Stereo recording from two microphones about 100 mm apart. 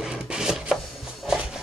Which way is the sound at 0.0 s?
5° right (ahead or behind).